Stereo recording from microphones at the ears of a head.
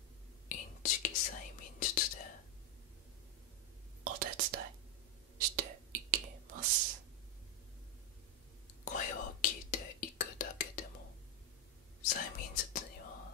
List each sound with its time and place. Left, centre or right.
0.5 s whispering: left
4.0 s whispering: right
8.8 s whispering: left
12.0 s whispering: left